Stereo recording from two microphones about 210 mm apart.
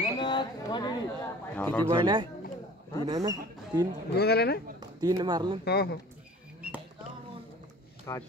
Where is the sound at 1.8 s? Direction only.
20° right (ahead or behind).